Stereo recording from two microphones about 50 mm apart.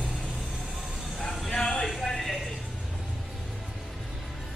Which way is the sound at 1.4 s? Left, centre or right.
Centre.